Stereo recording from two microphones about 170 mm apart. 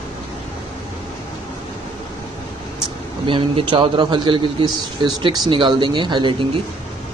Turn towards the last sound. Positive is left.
turn(degrees=-25)  # may be behind; listen again after turning